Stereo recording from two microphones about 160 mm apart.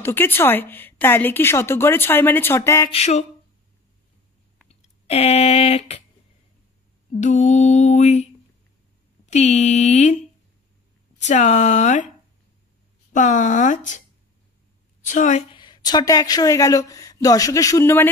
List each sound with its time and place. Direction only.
0.0 s a woman's voice: 15° left (ahead or behind)
2.9 s mantra: 45° left (ahead or behind)
4.6 s a sound: 40° left (ahead or behind)
7.2 s mantra: 50° left (ahead or behind)
11.1 s mantra: 45° left (ahead or behind)
13.1 s mantra: 50° left (ahead or behind)
15.0 s mantra: 50° left (ahead or behind)
15.5 s speech: 25° left (ahead or behind)